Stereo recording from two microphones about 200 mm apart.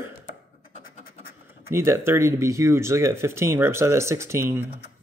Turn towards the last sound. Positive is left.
turn(degrees=-10)  # may be behind; listen again after turning